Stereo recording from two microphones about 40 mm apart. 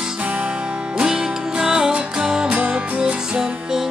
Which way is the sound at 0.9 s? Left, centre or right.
Centre.